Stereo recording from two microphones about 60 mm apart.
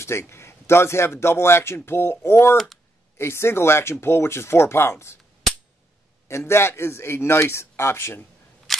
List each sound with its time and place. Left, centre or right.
0.0 s speech: left
2.5 s speech: centre
3.2 s speech: left
6.2 s speech: left
8.7 s cap gun: centre